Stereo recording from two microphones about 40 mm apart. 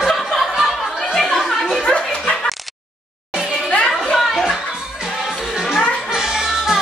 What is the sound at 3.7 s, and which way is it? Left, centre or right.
Music, centre.